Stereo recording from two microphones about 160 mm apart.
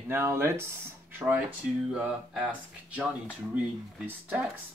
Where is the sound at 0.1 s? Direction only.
15° right (ahead or behind).